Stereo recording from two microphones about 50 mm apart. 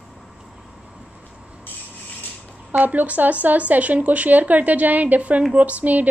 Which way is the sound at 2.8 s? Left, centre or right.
Right.